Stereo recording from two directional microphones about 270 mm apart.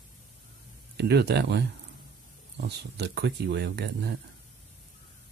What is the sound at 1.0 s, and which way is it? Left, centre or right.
Speech, right.